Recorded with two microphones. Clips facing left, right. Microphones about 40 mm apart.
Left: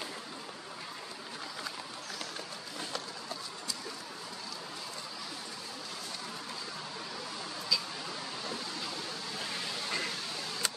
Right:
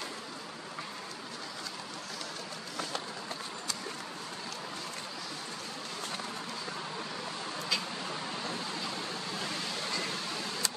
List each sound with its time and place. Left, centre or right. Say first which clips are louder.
7.7 s vehicle: left 1 dB; right